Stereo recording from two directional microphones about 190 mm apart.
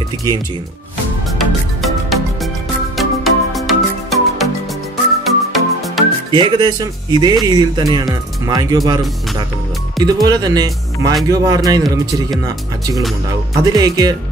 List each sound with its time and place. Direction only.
1.8 s music: centre (ahead or behind)
6.3 s speech: 20° right (ahead or behind)
13.6 s speech: 20° right (ahead or behind)